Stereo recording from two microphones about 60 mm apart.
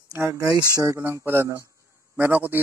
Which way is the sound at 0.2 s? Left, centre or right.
Right.